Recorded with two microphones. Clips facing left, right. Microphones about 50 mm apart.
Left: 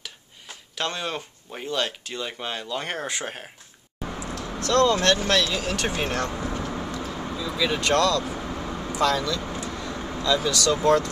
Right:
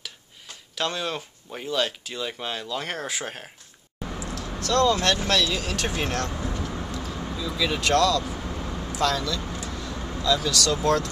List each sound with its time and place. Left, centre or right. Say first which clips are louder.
0.0 s speech: even; centre
4.1 s a sound: left 1 dB; centre
5.3 s speech: left 1 dB; centre
6.4 s vehicle: left 2 dB; left
6.9 s a sound: left 2 dB; centre
7.2 s speech: left 1 dB; centre
8.3 s vehicle: left 2 dB; centre
8.9 s speech: left 2 dB; centre
9.6 s vehicle: left 2 dB; centre
10.2 s speech: left 1 dB; centre